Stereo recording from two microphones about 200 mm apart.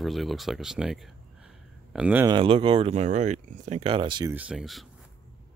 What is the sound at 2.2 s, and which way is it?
Speech, 25° right (ahead or behind).